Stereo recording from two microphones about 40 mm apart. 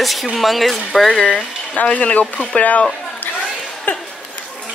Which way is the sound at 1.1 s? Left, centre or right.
Left.